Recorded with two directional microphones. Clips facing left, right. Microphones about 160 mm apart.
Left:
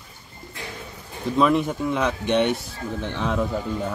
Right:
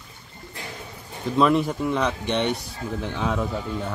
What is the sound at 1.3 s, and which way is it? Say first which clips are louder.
Speech: even; centre (ahead or behind).